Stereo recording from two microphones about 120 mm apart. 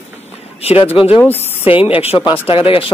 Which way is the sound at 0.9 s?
55° left (ahead or behind).